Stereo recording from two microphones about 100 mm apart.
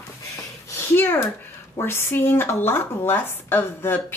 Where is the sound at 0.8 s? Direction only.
25° left (ahead or behind).